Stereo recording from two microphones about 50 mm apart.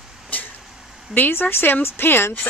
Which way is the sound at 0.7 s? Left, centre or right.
Centre.